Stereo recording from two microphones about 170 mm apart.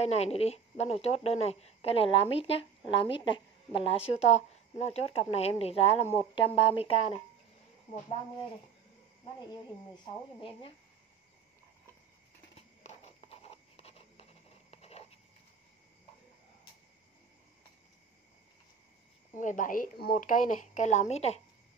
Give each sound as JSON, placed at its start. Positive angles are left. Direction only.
{"t": 0.0, "sound": "speech", "side_deg": 40}
{"t": 10.0, "sound": "speech", "side_deg": 30}
{"t": 12.5, "sound": "a sound", "side_deg": 40}
{"t": 19.3, "sound": "speech", "side_deg": 50}